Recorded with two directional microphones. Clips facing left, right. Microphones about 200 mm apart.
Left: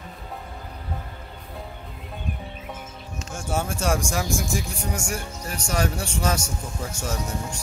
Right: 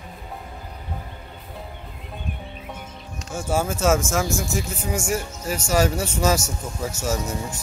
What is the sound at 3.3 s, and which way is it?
Speech, 5° right (ahead or behind).